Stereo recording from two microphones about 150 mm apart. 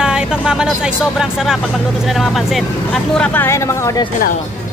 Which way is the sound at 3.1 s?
15° left (ahead or behind).